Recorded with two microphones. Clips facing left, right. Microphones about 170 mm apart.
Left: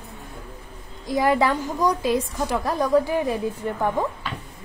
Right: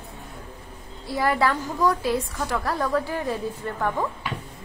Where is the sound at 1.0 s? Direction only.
20° left (ahead or behind).